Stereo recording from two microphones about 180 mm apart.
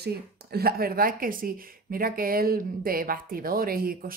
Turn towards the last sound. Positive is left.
turn(degrees=-55)  # may be behind; listen again after turning